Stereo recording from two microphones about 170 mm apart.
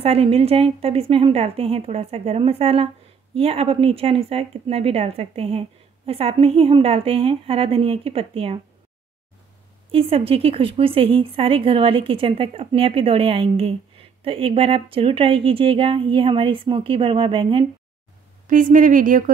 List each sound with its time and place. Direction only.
0.0 s a woman's voice: 35° right (ahead or behind)
9.8 s a woman's voice: 35° right (ahead or behind)
18.5 s a woman's voice: 50° right (ahead or behind)